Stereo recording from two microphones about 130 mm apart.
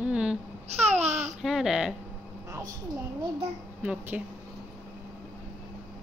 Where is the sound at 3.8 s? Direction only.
10° right (ahead or behind).